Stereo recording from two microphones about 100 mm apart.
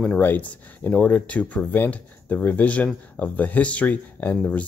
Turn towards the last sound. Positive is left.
turn(degrees=10)  # may be behind; listen again after turning